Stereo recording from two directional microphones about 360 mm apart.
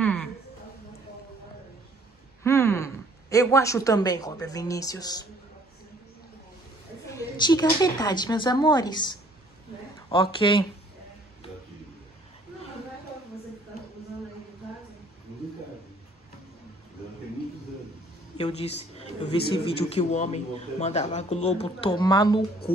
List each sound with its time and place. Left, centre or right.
0.0 s a sound: centre
2.4 s a woman's voice: centre
7.1 s a man's voice: centre
18.4 s a man's voice: centre